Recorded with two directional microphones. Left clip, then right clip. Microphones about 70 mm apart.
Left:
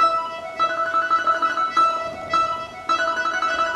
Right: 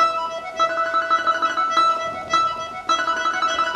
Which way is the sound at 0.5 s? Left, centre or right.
Right.